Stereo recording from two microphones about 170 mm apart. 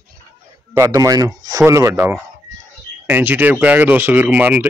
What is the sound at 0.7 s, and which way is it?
Speech, 20° right (ahead or behind).